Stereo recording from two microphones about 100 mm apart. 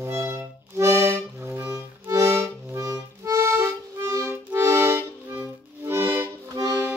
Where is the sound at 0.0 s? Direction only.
25° right (ahead or behind).